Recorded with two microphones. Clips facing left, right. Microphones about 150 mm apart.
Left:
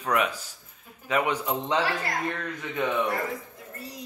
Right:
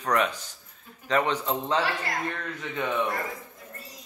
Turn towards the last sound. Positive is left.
turn(degrees=10)  # may be behind; listen again after turning